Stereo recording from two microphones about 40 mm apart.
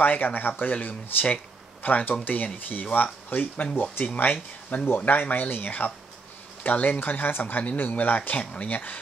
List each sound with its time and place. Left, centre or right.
0.0 s speech: left
8.2 s speech: left